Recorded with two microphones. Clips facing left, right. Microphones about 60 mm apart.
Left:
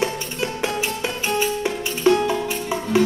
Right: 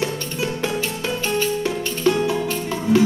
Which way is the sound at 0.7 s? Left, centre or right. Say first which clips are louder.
Right 1 dB; centre.